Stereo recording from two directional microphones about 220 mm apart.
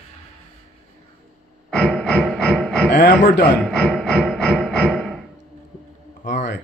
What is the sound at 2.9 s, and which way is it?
Speech, 45° left (ahead or behind).